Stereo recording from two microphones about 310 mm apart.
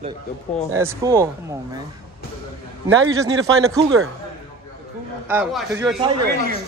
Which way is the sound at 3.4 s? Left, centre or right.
Right.